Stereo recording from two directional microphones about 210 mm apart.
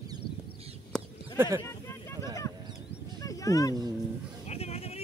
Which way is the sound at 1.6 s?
15° left (ahead or behind).